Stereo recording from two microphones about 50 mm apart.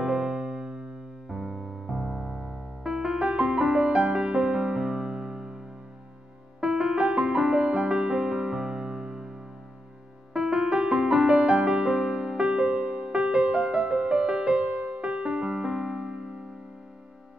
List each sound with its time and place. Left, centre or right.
0.0 s music: centre
1.3 s music: centre
6.6 s music: centre
10.3 s music: centre